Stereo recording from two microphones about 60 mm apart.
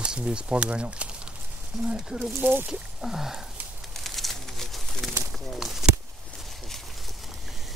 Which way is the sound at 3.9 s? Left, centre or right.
Centre.